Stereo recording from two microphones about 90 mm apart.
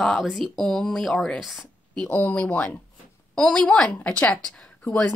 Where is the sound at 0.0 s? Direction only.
Centre (ahead or behind).